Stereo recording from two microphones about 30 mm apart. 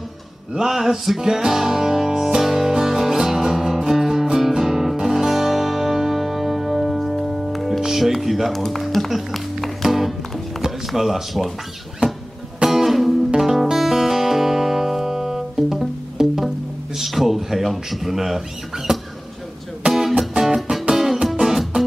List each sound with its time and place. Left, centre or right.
0.6 s music: centre
7.5 s music: centre
7.8 s music: centre
8.5 s speech: centre
9.1 s music: centre
10.9 s speech: centre
12.6 s music: centre
18.9 s a sound: right
19.9 s music: centre